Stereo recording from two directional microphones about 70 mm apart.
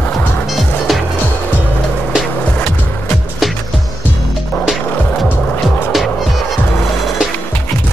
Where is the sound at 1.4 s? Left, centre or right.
Left.